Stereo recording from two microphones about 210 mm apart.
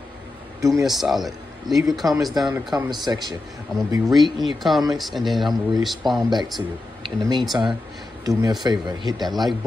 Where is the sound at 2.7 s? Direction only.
20° right (ahead or behind).